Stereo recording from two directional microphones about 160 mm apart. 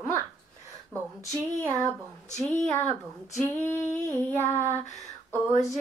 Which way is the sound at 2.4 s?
15° left (ahead or behind).